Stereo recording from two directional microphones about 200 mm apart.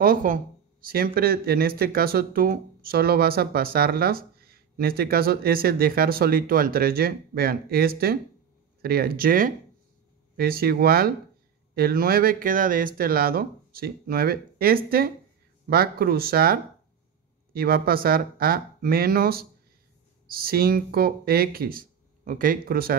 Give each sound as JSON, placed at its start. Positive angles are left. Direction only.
{"t": 0.0, "sound": "speech", "side_deg": -45}